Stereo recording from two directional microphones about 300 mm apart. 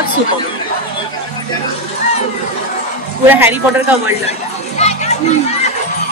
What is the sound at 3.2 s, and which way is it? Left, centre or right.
Speech, centre.